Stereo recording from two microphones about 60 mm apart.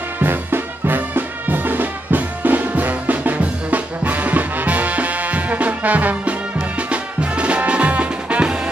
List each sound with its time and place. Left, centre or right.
0.2 s music: right; by 8.5 s centre